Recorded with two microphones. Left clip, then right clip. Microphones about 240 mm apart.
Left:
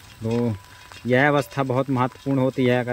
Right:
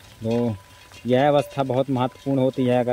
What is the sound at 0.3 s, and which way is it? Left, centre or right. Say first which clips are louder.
Speech: right 1 dB; left.